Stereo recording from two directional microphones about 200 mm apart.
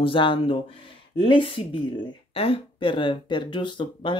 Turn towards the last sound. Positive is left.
turn(degrees=25)  # may be behind; listen again after turning